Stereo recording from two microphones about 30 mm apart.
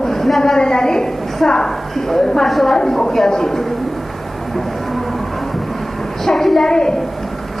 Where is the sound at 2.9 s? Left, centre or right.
Centre.